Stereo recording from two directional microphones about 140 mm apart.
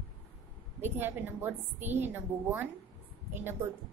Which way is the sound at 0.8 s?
15° right (ahead or behind).